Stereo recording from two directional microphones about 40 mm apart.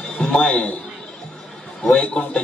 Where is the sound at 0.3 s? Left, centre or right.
Left.